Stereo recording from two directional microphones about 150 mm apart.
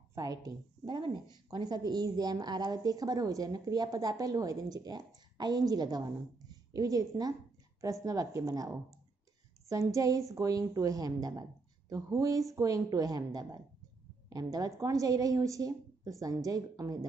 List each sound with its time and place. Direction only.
0.1 s a woman's voice: 25° right (ahead or behind)